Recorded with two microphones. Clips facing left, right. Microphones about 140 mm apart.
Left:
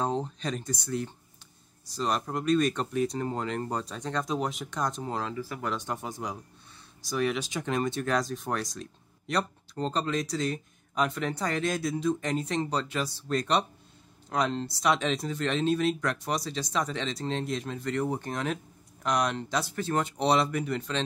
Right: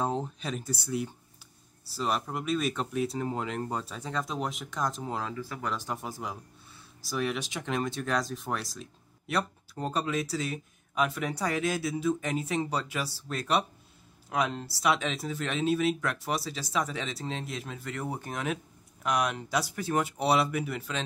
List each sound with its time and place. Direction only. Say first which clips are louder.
0.0 s speech: left 1 dB; 5° right (ahead or behind)